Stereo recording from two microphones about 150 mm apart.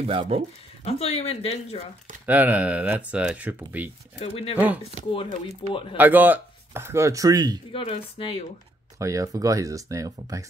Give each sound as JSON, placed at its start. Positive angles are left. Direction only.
{"t": 0.0, "sound": "speech", "side_deg": -40}
{"t": 0.8, "sound": "speech", "side_deg": 45}
{"t": 2.2, "sound": "speech", "side_deg": -10}
{"t": 4.2, "sound": "speech", "side_deg": 40}
{"t": 5.9, "sound": "speech", "side_deg": -10}
{"t": 7.7, "sound": "speech", "side_deg": 40}
{"t": 8.9, "sound": "speech", "side_deg": -20}